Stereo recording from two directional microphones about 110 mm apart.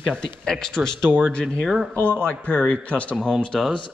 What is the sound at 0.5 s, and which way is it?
A man's voice, 5° left (ahead or behind).